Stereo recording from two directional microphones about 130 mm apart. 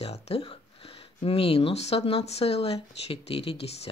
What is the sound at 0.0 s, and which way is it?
Speech, 50° left (ahead or behind).